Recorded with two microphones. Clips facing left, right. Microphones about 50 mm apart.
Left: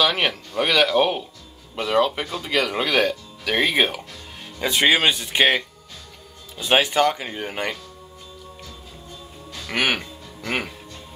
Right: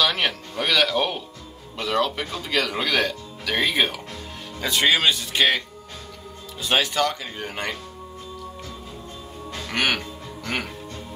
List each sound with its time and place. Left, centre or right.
0.0 s speech: centre
6.6 s speech: centre
9.7 s speech: centre